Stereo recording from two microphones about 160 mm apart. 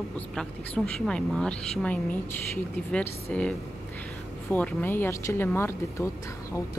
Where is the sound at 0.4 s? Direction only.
5° left (ahead or behind).